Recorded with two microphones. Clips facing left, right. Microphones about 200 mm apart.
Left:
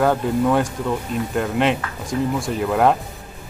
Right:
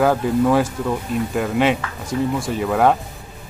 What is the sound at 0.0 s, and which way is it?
Speech, centre (ahead or behind).